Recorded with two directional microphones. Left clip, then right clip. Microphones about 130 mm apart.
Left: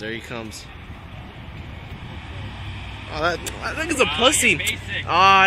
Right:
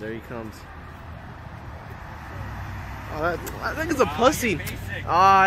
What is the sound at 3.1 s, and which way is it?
Speech, 5° right (ahead or behind).